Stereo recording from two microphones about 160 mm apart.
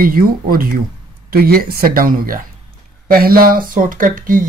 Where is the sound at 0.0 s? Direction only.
65° right (ahead or behind).